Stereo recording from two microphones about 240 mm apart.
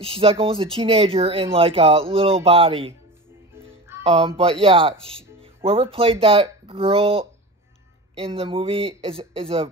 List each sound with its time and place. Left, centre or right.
0.0 s speech: right
4.0 s speech: right